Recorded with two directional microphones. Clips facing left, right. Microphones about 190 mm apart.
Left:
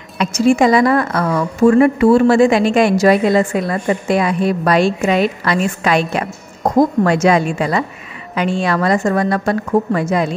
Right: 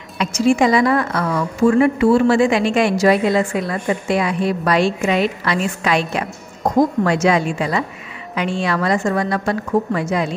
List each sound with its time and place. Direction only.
0.2 s a woman's voice: 45° left (ahead or behind)